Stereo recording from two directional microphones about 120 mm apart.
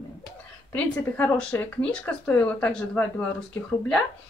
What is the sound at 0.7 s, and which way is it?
Speech, 15° left (ahead or behind).